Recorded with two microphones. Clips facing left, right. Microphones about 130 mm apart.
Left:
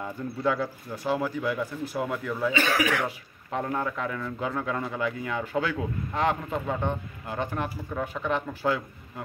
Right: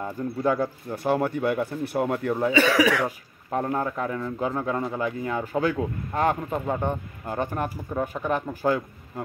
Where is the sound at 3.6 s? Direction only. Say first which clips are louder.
Right 2 dB; 35° right (ahead or behind).